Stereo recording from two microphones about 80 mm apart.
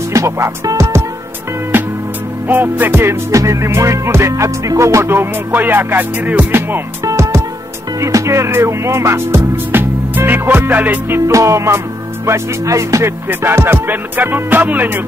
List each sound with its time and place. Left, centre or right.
0.1 s speech: right
2.4 s music: right
7.1 s music: right
13.3 s music: right